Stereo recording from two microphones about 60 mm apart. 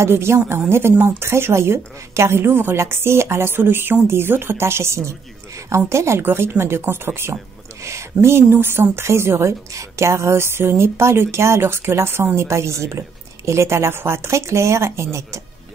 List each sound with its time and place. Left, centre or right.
0.0 s a woman's voice: right